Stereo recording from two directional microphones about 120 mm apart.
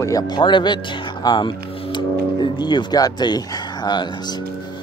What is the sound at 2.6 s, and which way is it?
Speech, 35° left (ahead or behind).